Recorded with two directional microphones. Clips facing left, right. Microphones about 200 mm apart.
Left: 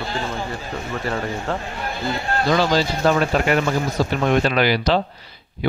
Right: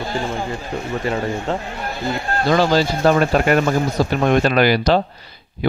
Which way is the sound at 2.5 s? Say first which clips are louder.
Right 3 dB; 50° right (ahead or behind).